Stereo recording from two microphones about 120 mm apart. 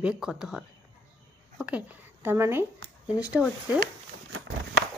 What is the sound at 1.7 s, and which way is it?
Speech, 15° right (ahead or behind).